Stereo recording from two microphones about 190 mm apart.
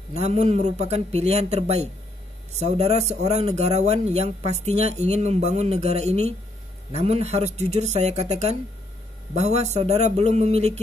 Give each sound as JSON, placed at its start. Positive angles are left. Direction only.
{"t": 0.2, "sound": "speech", "side_deg": -35}